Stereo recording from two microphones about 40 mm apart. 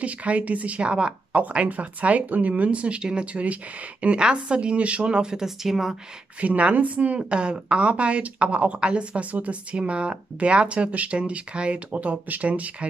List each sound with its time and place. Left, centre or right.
0.0 s speech: right
5.4 s speech: centre
6.4 s speech: right
7.2 s speech: right